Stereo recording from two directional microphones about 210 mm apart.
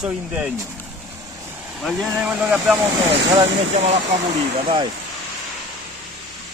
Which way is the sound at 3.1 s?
25° right (ahead or behind).